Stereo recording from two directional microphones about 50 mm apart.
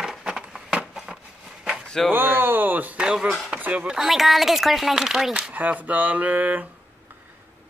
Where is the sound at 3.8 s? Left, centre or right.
Centre.